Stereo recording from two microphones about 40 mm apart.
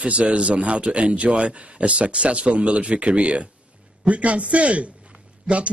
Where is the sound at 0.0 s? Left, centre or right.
Right.